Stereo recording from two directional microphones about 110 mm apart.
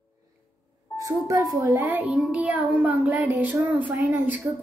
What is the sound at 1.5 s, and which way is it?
A child's voice, 20° right (ahead or behind).